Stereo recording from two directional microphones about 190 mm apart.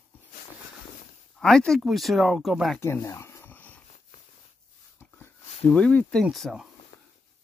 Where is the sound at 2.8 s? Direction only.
15° left (ahead or behind).